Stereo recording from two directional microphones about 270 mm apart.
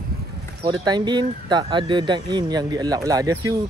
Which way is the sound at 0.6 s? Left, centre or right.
Centre.